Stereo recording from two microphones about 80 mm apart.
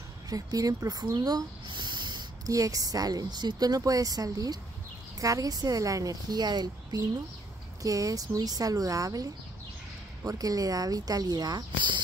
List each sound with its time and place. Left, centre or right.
0.3 s speech: right
2.4 s a woman's voice: right
7.8 s a woman's voice: right